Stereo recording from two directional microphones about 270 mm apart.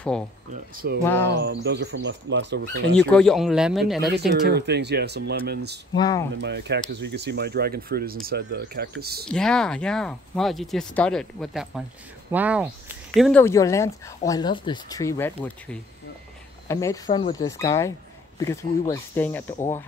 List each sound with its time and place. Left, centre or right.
0.5 s speech: right
1.0 s speech: centre
1.4 s speech: right
3.0 s speech: centre
4.3 s speech: right
5.9 s speech: centre
6.3 s speech: right
9.3 s speech: centre